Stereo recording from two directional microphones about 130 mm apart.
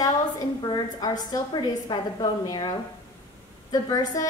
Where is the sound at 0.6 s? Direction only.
35° left (ahead or behind).